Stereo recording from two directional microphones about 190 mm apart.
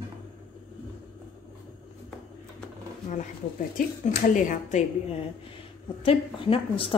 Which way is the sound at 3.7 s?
45° left (ahead or behind).